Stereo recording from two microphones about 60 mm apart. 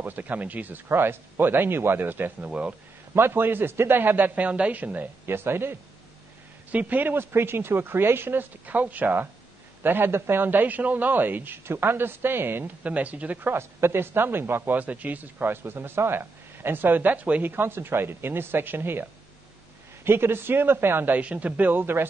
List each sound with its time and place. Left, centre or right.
0.0 s speech: right
0.8 s speech: right
5.2 s speech: right
6.7 s speech: right
8.6 s speech: right
12.8 s speech: right
13.5 s speech: right
14.8 s speech: right
20.1 s speech: right